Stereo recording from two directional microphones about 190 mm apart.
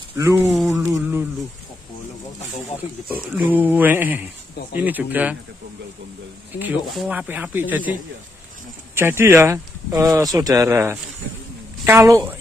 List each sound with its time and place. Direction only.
0.2 s speech: 15° right (ahead or behind)
0.5 s a sound: centre (ahead or behind)
0.9 s speech: 5° right (ahead or behind)
3.3 s speech: 10° right (ahead or behind)
6.6 s speech: 10° right (ahead or behind)
8.9 s speech: 15° right (ahead or behind)